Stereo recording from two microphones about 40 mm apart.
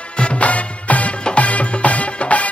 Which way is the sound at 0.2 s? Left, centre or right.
Left.